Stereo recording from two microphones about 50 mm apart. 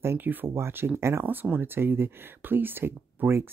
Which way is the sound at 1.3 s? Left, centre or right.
Right.